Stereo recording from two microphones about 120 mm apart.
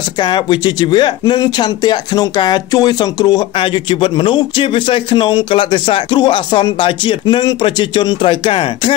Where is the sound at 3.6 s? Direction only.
45° left (ahead or behind).